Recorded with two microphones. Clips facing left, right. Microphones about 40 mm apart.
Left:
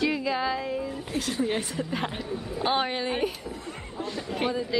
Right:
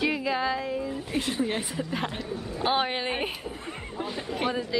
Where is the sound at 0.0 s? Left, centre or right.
Centre.